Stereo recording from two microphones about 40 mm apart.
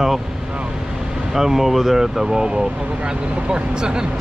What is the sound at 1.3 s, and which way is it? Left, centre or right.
Speech, centre.